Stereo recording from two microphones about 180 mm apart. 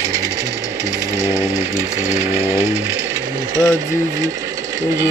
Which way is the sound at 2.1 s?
15° right (ahead or behind).